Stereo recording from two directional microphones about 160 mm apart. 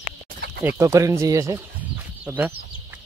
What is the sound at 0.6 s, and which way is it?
Speech, 15° right (ahead or behind).